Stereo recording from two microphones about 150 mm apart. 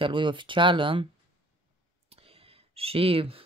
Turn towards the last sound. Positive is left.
turn(degrees=-40)  # may be behind; listen again after turning